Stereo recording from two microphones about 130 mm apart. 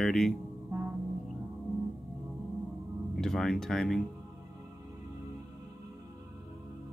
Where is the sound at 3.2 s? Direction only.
5° left (ahead or behind).